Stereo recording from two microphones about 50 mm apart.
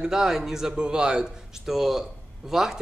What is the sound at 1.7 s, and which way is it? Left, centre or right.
A man's voice, centre.